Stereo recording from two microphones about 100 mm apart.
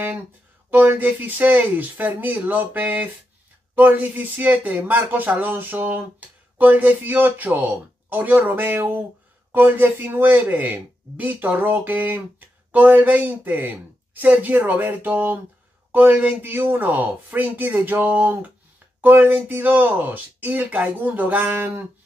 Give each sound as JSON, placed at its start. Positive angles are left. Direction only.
{"t": 0.7, "sound": "speech", "side_deg": -15}